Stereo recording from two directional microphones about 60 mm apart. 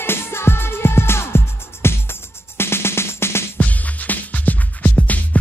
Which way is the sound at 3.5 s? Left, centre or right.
Left.